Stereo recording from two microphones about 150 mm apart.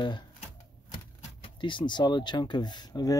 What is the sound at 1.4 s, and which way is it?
Speech, 30° left (ahead or behind).